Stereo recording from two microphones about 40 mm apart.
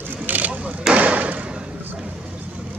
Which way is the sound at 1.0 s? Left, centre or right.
Right.